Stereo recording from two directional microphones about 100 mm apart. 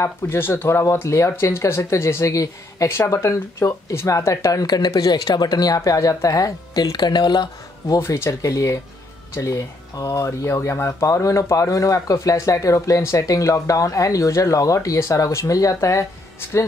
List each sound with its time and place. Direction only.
0.0 s speech: 25° left (ahead or behind); by 7.4 s 45° left (ahead or behind)
8.0 s speech: 30° left (ahead or behind)